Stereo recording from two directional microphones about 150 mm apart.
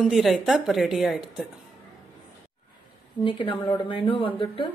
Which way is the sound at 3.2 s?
35° left (ahead or behind).